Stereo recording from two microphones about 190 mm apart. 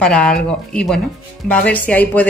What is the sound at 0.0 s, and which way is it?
Speech, 5° left (ahead or behind).